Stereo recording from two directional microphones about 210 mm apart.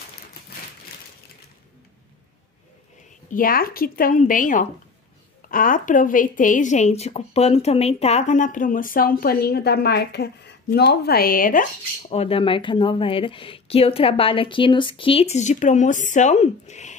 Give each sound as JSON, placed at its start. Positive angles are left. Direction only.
{"t": 3.3, "sound": "a woman's voice", "side_deg": 40}
{"t": 12.1, "sound": "speech", "side_deg": 30}